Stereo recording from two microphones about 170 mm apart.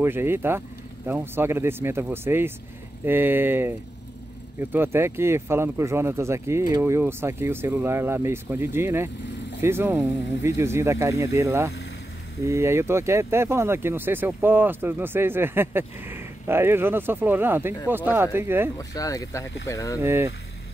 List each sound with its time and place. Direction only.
0.0 s speech: 15° right (ahead or behind)
18.8 s speech: 20° left (ahead or behind)
20.0 s speech: 15° right (ahead or behind)